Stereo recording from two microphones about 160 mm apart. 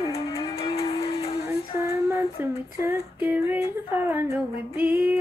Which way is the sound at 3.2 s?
10° right (ahead or behind).